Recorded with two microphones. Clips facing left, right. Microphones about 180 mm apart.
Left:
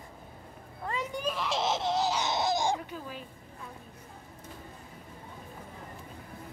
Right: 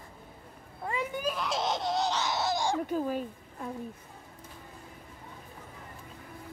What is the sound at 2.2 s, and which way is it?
Laughter, 20° left (ahead or behind).